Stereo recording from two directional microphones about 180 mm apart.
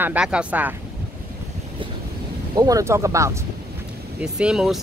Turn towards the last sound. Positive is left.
turn(degrees=-5)  # may be behind; listen again after turning